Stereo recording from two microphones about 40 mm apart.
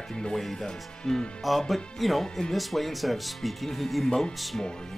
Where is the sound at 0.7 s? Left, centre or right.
Centre.